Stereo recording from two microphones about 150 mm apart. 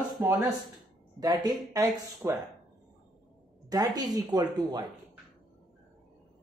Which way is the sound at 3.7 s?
25° right (ahead or behind).